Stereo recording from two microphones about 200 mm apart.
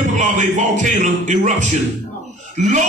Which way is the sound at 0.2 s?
40° right (ahead or behind).